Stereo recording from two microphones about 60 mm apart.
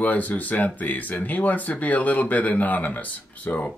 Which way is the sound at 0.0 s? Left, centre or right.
Left.